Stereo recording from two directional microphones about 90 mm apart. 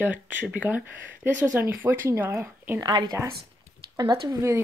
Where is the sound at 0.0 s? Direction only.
20° right (ahead or behind).